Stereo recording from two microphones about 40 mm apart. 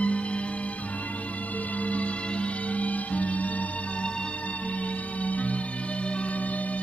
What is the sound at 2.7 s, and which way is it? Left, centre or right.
Music, left.